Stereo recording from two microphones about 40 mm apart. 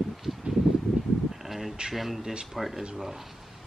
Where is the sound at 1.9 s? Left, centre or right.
Centre.